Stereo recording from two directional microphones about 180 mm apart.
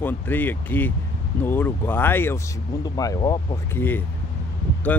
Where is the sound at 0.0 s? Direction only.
10° left (ahead or behind).